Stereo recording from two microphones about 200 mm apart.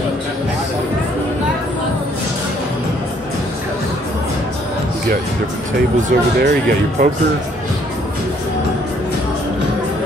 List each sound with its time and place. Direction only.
6.0 s speech: 50° right (ahead or behind)